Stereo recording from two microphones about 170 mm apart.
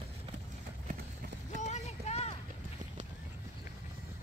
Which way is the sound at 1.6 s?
40° left (ahead or behind).